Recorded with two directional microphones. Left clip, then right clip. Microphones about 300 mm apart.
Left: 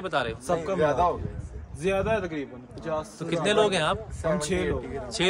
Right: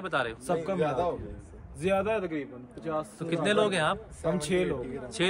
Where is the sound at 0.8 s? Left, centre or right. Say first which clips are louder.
Left 8 dB; left.